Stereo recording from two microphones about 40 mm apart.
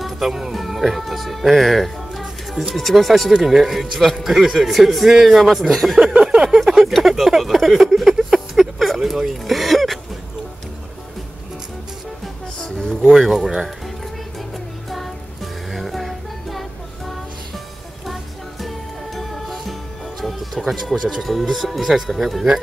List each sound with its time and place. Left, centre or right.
0.0 s a man's voice: centre
6.2 s a sound: centre
6.5 s speech: centre
7.0 s a sound: centre
12.5 s speech: centre
13.1 s a man's voice: centre
14.9 s music: centre
20.6 s a man's voice: centre